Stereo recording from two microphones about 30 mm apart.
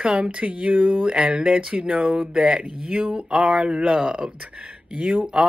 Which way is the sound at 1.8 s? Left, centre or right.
Right.